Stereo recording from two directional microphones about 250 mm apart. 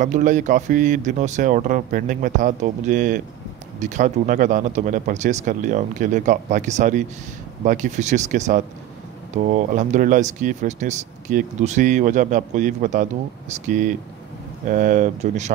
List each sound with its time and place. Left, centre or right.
0.0 s speech: right